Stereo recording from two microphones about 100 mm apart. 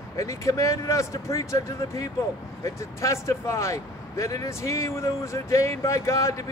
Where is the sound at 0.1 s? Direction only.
30° left (ahead or behind).